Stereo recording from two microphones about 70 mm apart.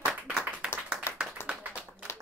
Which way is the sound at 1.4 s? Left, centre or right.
Left.